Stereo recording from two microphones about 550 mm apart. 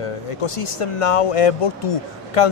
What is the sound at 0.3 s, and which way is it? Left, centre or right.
Speech, left.